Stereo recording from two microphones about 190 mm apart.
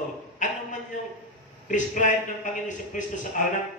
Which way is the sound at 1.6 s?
40° left (ahead or behind).